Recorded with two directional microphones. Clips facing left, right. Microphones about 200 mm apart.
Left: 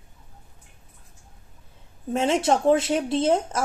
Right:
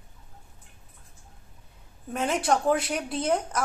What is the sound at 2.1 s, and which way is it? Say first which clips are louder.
Speech: left 4 dB; 25° left (ahead or behind).